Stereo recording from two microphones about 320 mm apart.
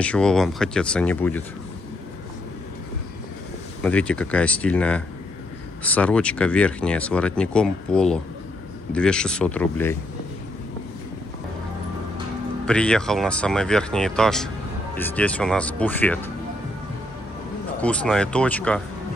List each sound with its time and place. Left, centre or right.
0.0 s speech: centre
3.8 s speech: centre
12.6 s speech: centre
17.8 s speech: centre